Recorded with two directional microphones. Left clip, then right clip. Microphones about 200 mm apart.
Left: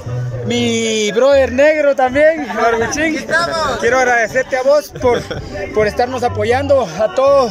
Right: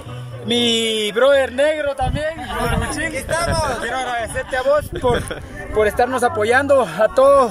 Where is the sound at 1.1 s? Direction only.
15° left (ahead or behind).